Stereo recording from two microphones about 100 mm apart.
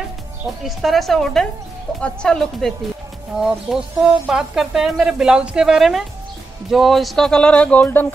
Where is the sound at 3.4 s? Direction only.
5° right (ahead or behind).